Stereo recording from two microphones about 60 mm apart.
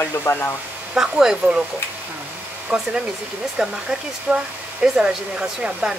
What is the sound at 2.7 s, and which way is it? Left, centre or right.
Speech, centre.